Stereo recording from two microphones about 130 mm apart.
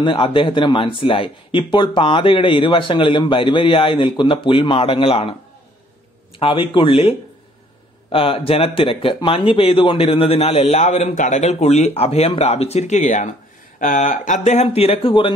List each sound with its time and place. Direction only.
0.0 s speech: 40° left (ahead or behind)
6.4 s speech: 40° left (ahead or behind)
10.5 s speech: 60° left (ahead or behind)
13.7 s speech: 80° left; by 15.3 s 45° left (ahead or behind)